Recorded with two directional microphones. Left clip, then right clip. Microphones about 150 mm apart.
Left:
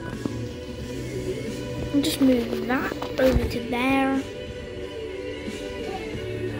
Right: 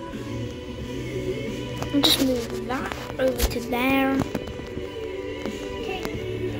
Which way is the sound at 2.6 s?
30° left (ahead or behind).